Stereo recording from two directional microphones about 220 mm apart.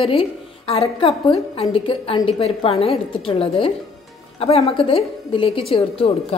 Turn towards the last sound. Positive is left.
turn(degrees=25)  # may be behind; listen again after turning